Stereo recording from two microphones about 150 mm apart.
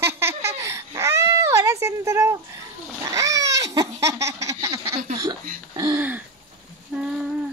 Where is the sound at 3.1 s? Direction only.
20° right (ahead or behind).